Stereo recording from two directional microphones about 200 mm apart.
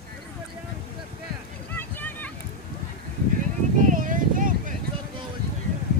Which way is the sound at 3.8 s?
40° right (ahead or behind).